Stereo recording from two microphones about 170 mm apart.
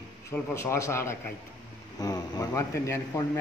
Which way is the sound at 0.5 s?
15° left (ahead or behind).